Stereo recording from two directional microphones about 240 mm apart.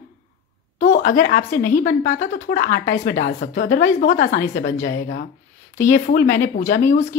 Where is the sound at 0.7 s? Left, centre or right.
Left.